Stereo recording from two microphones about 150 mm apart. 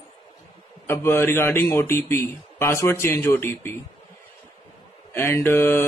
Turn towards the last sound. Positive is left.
turn(degrees=15)  # may be behind; listen again after turning